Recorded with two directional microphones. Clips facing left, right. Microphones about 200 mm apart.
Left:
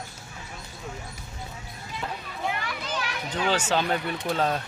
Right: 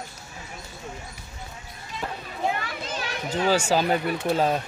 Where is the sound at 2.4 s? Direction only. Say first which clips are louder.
Right 3 dB; 30° right (ahead or behind).